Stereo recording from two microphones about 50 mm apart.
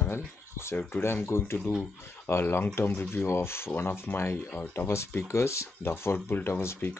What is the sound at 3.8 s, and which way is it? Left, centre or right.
Speech, left.